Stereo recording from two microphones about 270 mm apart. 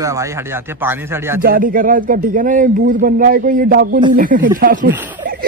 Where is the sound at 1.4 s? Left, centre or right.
Right.